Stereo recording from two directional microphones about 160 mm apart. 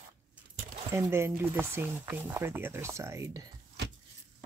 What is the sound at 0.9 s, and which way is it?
Speech, 15° right (ahead or behind).